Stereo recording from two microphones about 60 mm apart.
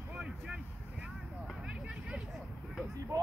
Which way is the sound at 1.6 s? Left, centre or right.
Centre.